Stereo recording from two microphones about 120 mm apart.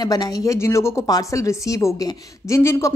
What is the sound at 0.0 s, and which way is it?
A woman's voice, 35° left (ahead or behind).